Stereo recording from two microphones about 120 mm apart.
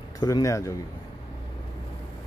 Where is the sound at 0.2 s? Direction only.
30° left (ahead or behind).